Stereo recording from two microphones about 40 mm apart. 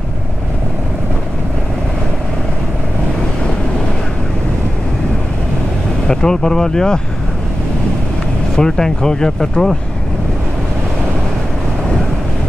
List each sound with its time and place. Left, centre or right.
6.0 s speech: centre
8.5 s speech: centre